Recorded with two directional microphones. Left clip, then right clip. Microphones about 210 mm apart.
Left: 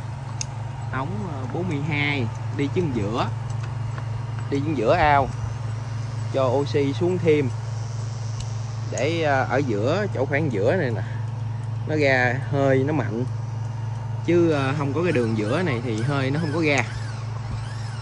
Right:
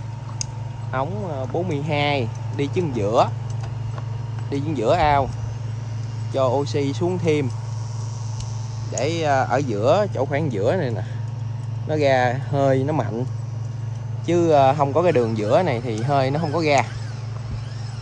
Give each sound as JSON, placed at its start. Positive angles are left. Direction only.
{"t": 0.9, "sound": "speech", "side_deg": -30}
{"t": 4.5, "sound": "speech", "side_deg": -10}
{"t": 6.3, "sound": "speech", "side_deg": -5}
{"t": 8.9, "sound": "speech", "side_deg": 0}
{"t": 14.2, "sound": "speech", "side_deg": -20}